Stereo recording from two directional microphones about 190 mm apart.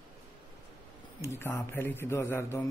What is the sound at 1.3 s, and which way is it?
Speech, 10° left (ahead or behind).